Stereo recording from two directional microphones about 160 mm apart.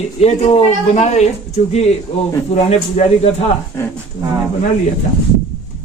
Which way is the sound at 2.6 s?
40° left (ahead or behind).